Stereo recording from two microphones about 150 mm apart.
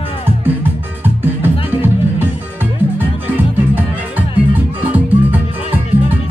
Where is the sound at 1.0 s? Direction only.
15° right (ahead or behind).